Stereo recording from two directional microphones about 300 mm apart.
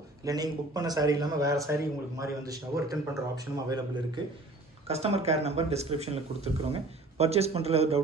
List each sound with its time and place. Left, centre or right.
0.2 s speech: centre